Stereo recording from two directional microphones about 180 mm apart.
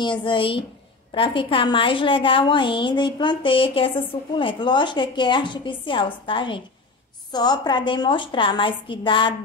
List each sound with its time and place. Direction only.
0.0 s a woman's voice: 25° left (ahead or behind)